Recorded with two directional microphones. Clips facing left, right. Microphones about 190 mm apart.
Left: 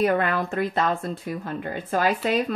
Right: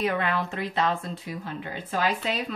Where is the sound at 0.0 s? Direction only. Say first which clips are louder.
Left 5 dB; 45° left (ahead or behind).